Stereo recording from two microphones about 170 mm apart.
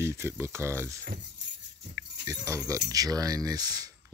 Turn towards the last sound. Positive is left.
turn(degrees=-20)  # may be behind; listen again after turning